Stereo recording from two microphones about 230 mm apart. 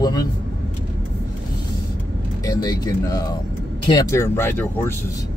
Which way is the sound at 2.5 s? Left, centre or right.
Centre.